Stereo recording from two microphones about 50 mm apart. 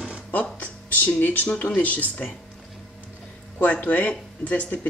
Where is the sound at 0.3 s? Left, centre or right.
Left.